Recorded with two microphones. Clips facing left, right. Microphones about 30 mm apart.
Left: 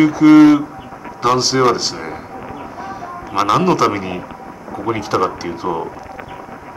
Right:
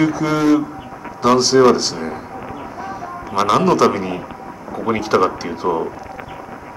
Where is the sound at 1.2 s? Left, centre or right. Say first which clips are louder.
Right 2 dB; centre.